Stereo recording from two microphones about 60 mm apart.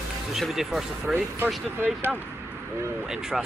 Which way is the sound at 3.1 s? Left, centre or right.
Centre.